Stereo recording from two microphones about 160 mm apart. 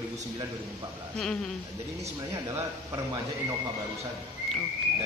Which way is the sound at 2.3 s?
15° right (ahead or behind).